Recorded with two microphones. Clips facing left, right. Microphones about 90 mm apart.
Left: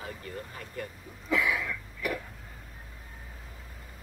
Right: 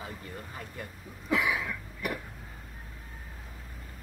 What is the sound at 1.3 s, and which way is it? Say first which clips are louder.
Cough: even; 20° right (ahead or behind).